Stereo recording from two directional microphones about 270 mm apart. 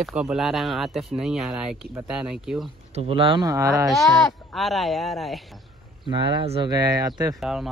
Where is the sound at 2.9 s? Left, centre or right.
Right.